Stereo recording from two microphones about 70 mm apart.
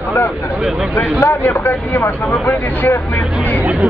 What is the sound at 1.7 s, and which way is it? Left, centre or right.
Speech, left.